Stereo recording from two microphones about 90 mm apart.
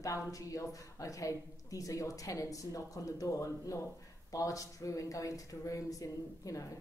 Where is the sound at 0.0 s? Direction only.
40° left (ahead or behind).